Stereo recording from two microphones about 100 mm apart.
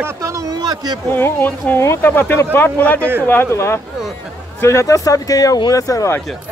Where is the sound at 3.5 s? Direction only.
25° left (ahead or behind).